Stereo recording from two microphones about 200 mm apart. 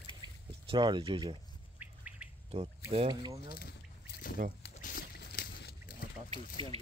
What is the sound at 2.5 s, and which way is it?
Speech, 30° right (ahead or behind).